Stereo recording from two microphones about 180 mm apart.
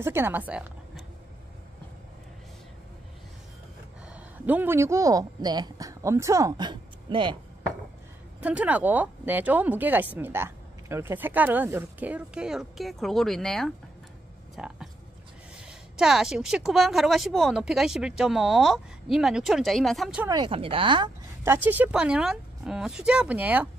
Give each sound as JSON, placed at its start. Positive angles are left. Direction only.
{"t": 0.0, "sound": "a woman's voice", "side_deg": -15}
{"t": 4.1, "sound": "a man's voice", "side_deg": -10}
{"t": 8.4, "sound": "a woman's voice", "side_deg": -10}
{"t": 20.2, "sound": "speech", "side_deg": -25}
{"t": 21.5, "sound": "speech", "side_deg": -10}